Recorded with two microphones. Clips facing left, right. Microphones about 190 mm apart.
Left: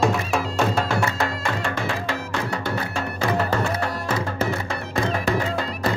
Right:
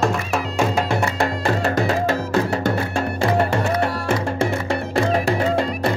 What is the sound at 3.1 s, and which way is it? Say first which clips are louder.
Music: right 3 dB; 30° right (ahead or behind).